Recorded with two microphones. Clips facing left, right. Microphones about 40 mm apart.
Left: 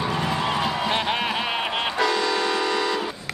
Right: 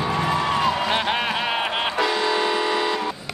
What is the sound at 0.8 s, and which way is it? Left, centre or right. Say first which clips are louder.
Vehicle: right 1 dB; centre.